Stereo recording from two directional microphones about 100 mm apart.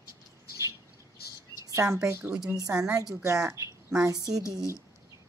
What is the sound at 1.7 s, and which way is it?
Speech, 30° right (ahead or behind).